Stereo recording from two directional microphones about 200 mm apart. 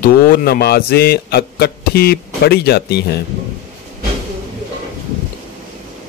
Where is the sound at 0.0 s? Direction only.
45° left (ahead or behind).